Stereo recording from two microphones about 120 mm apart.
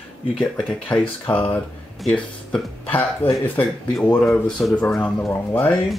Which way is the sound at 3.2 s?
15° left (ahead or behind).